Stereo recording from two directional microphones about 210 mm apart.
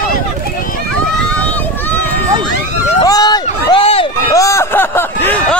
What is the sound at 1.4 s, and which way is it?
Run, 10° left (ahead or behind).